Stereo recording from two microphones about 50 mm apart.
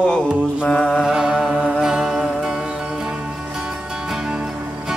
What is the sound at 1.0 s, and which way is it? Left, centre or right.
Music, centre.